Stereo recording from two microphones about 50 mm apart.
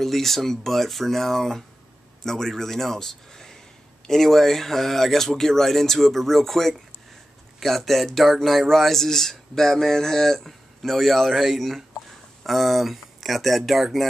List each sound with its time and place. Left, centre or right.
0.0 s a man's voice: centre